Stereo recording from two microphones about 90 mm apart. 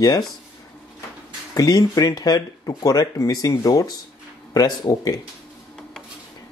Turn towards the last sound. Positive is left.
turn(degrees=45)  # may be behind; listen again after turning